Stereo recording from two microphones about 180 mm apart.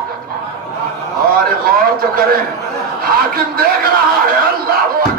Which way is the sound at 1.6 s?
55° right (ahead or behind).